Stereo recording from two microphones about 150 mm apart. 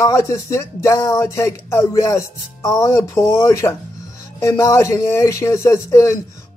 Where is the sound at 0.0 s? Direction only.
20° left (ahead or behind).